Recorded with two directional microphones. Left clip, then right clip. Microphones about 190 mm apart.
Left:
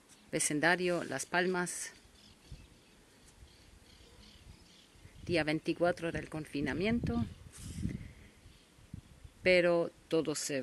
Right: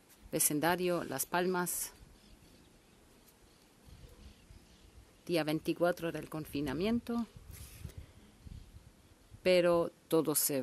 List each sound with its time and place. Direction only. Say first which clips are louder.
0.3 s speech: left 2 dB; 5° right (ahead or behind)
5.2 s speech: left 1 dB; 5° right (ahead or behind)
9.4 s speech: even; 5° right (ahead or behind)
10.0 s speech: right 2 dB; 15° right (ahead or behind)